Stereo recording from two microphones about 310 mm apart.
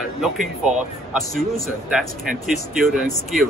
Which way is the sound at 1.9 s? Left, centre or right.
Centre.